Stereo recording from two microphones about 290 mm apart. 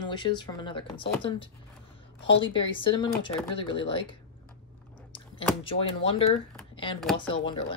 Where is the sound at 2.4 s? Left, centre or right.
Centre.